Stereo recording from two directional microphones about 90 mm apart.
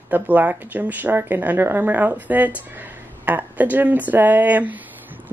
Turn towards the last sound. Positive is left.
turn(degrees=-20)  # may be behind; listen again after turning